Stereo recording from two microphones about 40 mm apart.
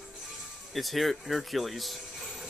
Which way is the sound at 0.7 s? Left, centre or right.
Centre.